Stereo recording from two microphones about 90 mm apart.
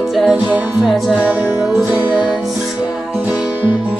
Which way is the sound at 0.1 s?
Centre (ahead or behind).